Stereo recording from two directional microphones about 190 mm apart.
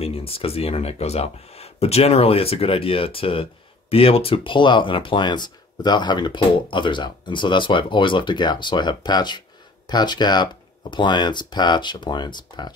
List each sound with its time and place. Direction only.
0.0 s speech: 30° left (ahead or behind)